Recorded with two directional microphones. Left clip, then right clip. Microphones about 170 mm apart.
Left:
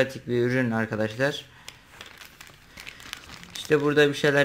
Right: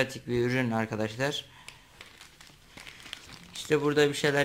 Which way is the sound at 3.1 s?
15° left (ahead or behind).